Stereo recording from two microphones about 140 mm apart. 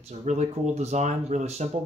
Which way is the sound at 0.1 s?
55° right (ahead or behind).